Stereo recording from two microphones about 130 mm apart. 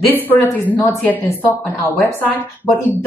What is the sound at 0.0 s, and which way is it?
Speech, 15° left (ahead or behind).